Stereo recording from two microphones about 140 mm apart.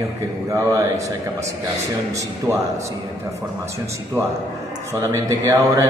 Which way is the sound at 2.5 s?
20° right (ahead or behind).